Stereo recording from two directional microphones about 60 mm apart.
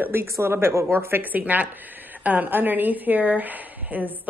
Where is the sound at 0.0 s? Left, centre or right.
Right.